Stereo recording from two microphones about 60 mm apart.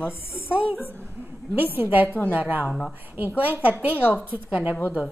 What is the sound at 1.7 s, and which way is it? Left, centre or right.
Speech, right.